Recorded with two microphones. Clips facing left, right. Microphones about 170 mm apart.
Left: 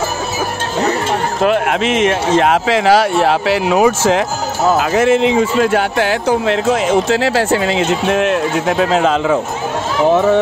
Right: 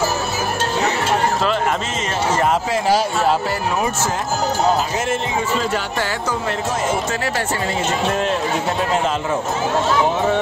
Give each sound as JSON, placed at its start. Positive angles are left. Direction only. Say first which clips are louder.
{"t": 1.4, "sound": "speech", "louder": "left 6 dB", "side_deg": 65}